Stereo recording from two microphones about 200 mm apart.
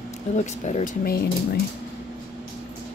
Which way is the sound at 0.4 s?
35° left (ahead or behind).